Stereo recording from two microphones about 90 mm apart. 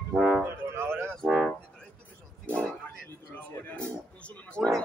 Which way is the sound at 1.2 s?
Centre (ahead or behind).